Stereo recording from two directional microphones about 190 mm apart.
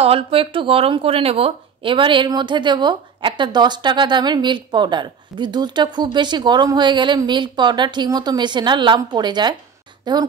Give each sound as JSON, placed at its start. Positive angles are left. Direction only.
{"t": 0.0, "sound": "a woman's voice", "side_deg": -30}